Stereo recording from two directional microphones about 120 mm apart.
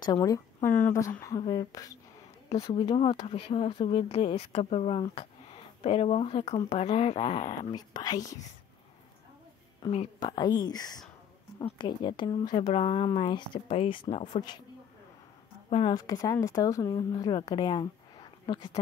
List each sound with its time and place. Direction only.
0.0 s speech: 30° left (ahead or behind)
0.7 s speech: 15° left (ahead or behind)
1.5 s speech: 30° left (ahead or behind)
2.7 s speech: 45° left (ahead or behind); by 7.5 s 60° left (ahead or behind)
7.7 s speech: 35° left (ahead or behind)
9.8 s speech: 30° left (ahead or behind); by 14.4 s 65° left (ahead or behind)
15.9 s speech: 30° left (ahead or behind)